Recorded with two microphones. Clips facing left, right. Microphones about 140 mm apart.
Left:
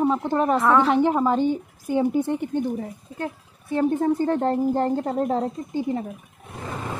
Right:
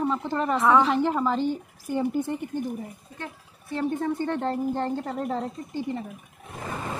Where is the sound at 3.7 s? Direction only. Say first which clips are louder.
Left 6 dB; 45° left (ahead or behind).